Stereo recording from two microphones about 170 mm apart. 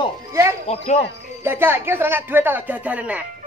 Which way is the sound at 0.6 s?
40° left (ahead or behind).